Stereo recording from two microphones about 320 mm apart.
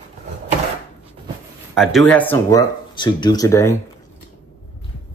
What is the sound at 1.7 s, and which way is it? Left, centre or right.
Speech, centre.